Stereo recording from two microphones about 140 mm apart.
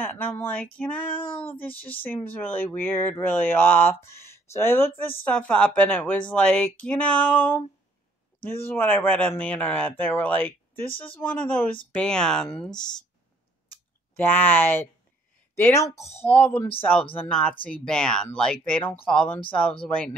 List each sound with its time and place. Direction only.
0.0 s speech: 15° left (ahead or behind)
14.1 s speech: 15° left (ahead or behind)